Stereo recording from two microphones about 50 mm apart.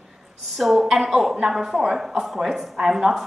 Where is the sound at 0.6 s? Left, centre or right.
Centre.